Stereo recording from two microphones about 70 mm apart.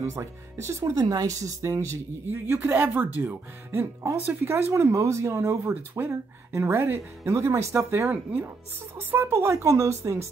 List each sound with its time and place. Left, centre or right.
0.0 s speech: right
2.4 s speech: right